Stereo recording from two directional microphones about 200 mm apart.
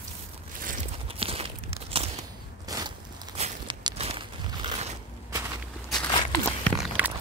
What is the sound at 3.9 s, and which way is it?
Crunch, 30° right (ahead or behind).